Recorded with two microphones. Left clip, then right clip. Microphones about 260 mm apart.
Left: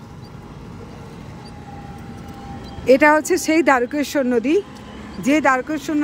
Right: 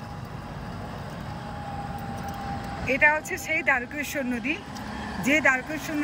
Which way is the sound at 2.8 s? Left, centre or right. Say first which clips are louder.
Left 9 dB; centre.